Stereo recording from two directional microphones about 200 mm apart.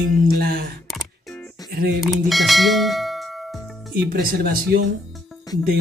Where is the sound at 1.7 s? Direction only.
50° right (ahead or behind).